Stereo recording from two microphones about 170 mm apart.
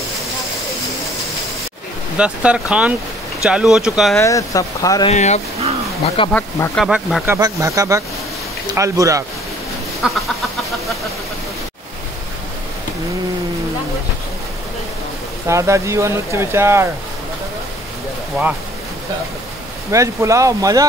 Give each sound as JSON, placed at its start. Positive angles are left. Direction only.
{"t": 2.1, "sound": "speech", "side_deg": -5}
{"t": 4.2, "sound": "speech", "side_deg": 20}
{"t": 5.0, "sound": "speech", "side_deg": 40}
{"t": 6.0, "sound": "speech", "side_deg": 30}
{"t": 6.3, "sound": "speech", "side_deg": 10}
{"t": 7.2, "sound": "speech", "side_deg": -20}
{"t": 10.0, "sound": "speech", "side_deg": -5}
{"t": 15.4, "sound": "speech", "side_deg": -15}
{"t": 19.9, "sound": "speech", "side_deg": -20}